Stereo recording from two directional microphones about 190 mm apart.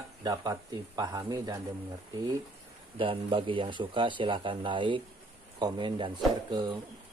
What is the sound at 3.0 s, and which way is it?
Speech, 25° right (ahead or behind).